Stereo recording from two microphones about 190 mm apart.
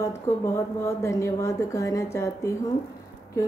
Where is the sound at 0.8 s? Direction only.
15° left (ahead or behind).